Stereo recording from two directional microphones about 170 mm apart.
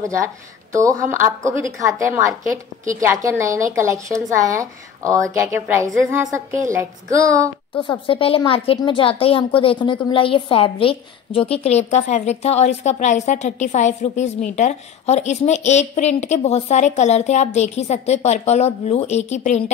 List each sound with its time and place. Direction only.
0.7 s a woman's voice: 20° right (ahead or behind)
7.7 s a woman's voice: 30° left (ahead or behind)